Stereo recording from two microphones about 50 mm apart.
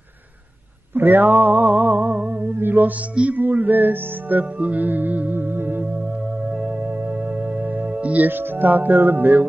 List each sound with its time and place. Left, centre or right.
0.9 s music: right
3.4 s music: right
6.5 s music: right
6.8 s music: right
8.3 s music: right